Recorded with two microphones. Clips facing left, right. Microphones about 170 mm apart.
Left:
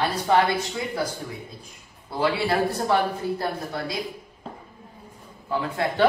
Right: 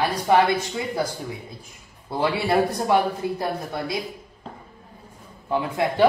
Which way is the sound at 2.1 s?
25° right (ahead or behind).